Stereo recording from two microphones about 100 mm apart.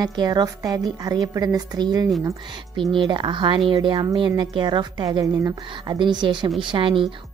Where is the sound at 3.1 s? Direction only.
50° right (ahead or behind).